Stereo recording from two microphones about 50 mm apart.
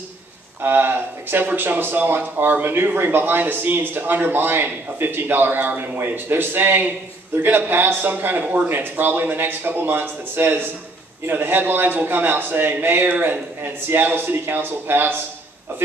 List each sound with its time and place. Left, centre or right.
0.6 s speech: right